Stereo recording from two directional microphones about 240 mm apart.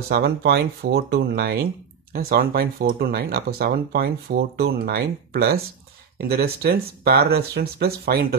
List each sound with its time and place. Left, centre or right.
0.1 s speech: right